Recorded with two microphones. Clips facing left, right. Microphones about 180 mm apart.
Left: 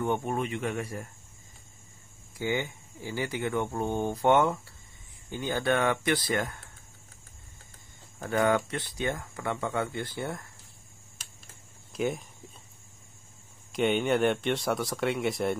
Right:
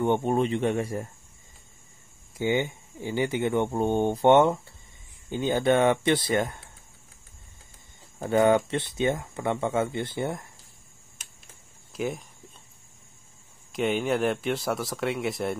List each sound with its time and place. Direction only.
0.0 s speech: 25° right (ahead or behind)
2.3 s speech: 20° right (ahead or behind)
8.2 s speech: 20° right (ahead or behind)
11.9 s speech: centre (ahead or behind)
13.7 s speech: centre (ahead or behind)